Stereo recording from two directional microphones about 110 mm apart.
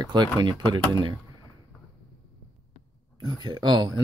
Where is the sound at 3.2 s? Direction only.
40° right (ahead or behind).